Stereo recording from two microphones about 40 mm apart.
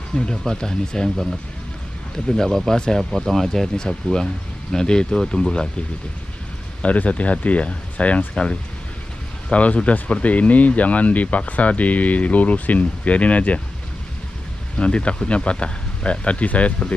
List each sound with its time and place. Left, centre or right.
0.1 s speech: centre
2.1 s speech: centre
6.8 s speech: left
9.5 s speech: left
14.8 s speech: left